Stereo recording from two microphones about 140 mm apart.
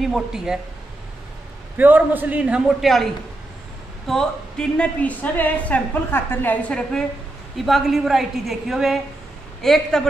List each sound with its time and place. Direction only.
0.0 s a woman's voice: 5° right (ahead or behind)
1.8 s a man's voice: 15° right (ahead or behind)
4.1 s a woman's voice: 5° left (ahead or behind)